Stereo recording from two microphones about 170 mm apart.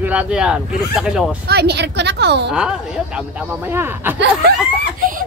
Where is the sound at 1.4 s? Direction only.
70° right (ahead or behind); by 2.5 s 90° right.